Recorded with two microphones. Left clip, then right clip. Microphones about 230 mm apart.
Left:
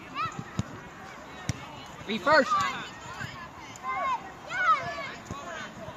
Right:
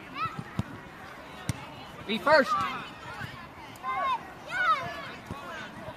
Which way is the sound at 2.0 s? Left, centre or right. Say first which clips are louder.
Even; right.